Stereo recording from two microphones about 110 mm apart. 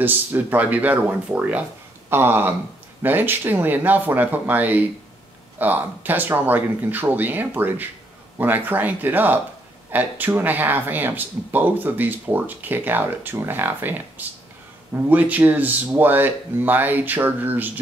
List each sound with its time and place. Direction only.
0.0 s speech: 15° right (ahead or behind)